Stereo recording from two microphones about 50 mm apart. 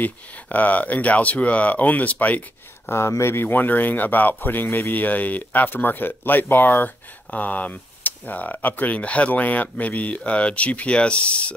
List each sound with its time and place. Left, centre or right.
0.0 s speech: left
2.9 s speech: left
3.3 s speech: left
4.6 s speech: left
4.9 s speech: left
7.2 s speech: left